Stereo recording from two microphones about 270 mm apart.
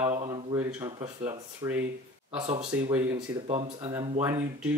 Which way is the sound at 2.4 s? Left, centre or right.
Right.